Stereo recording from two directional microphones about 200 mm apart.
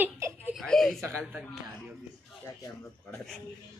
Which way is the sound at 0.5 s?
Centre (ahead or behind).